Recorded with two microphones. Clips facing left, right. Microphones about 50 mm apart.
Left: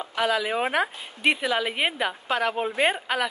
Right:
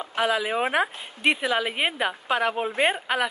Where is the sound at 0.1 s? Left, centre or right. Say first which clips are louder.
Even; centre.